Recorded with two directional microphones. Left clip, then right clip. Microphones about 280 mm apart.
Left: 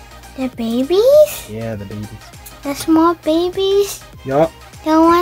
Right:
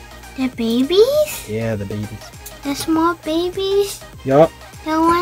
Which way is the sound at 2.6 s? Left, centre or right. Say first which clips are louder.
Left 4 dB; centre.